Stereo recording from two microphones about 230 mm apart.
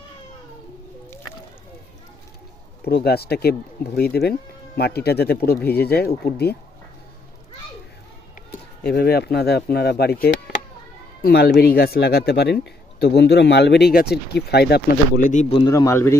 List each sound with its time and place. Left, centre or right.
2.8 s speech: left
8.9 s speech: left; by 16.2 s centre